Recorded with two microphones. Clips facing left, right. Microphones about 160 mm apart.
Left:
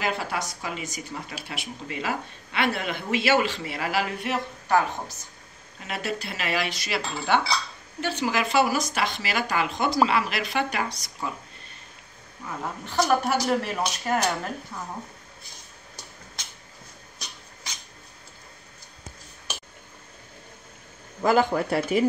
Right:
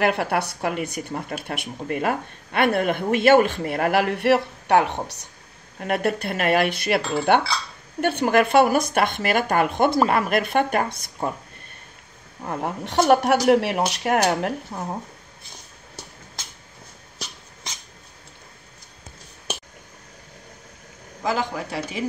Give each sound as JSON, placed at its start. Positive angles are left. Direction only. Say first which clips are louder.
{"t": 0.0, "sound": "speech", "louder": "right 7 dB", "side_deg": -60}
{"t": 5.8, "sound": "a woman's voice", "louder": "right 8 dB", "side_deg": -55}
{"t": 12.4, "sound": "speech", "louder": "right 6 dB", "side_deg": -65}
{"t": 14.7, "sound": "a woman's voice", "louder": "right 6 dB", "side_deg": -50}
{"t": 21.2, "sound": "speech", "louder": "left 4 dB", "side_deg": 60}